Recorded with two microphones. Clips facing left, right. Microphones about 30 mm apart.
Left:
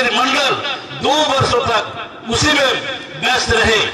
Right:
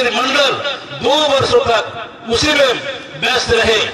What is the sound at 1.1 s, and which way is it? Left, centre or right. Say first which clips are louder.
Speech: right 2 dB; right.